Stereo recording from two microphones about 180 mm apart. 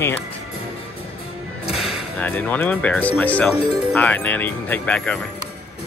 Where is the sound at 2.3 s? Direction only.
10° left (ahead or behind).